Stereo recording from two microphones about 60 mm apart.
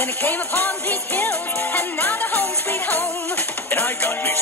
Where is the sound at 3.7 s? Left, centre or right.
Left.